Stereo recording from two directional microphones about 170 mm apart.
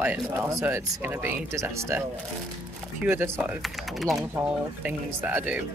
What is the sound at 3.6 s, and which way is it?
Speech, centre (ahead or behind).